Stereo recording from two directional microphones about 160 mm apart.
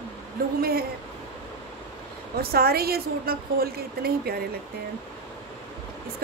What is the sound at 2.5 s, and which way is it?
A woman's voice, 75° right (ahead or behind).